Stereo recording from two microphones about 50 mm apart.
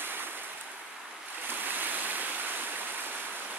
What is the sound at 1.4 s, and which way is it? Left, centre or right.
Waves, right.